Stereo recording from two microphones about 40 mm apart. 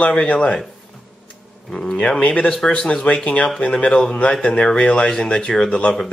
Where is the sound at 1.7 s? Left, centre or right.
Centre.